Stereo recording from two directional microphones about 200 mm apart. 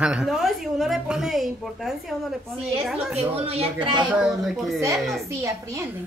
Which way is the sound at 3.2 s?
30° right (ahead or behind).